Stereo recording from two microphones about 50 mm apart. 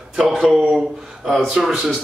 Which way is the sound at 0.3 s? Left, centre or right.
Centre.